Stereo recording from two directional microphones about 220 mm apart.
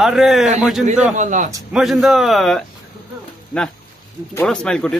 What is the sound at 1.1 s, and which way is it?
Speech, 35° right (ahead or behind).